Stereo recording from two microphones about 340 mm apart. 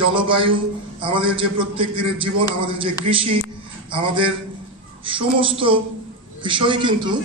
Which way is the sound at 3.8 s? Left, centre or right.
Centre.